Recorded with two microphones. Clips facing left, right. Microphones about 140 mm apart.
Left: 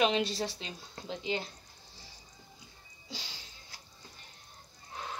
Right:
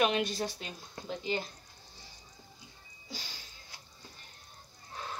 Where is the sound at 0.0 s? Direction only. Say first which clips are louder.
Left 1 dB; 25° left (ahead or behind).